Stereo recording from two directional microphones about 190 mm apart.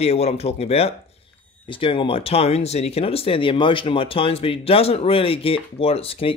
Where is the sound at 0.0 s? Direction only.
35° left (ahead or behind).